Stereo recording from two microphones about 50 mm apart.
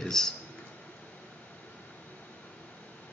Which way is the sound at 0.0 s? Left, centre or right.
Centre.